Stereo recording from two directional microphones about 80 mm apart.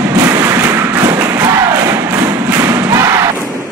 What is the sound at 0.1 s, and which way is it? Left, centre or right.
Thump, right.